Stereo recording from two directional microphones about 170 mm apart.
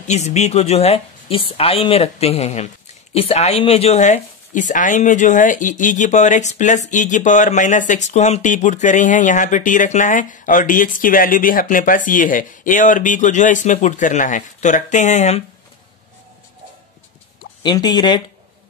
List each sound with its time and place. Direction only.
0.0 s a woman's voice: 40° left (ahead or behind)
17.6 s speech: 25° left (ahead or behind)